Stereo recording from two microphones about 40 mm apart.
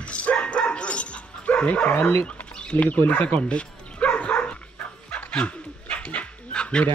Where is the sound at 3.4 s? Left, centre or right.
Left.